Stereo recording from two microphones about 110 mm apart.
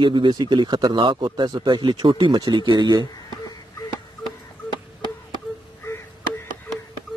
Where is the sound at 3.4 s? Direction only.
35° left (ahead or behind).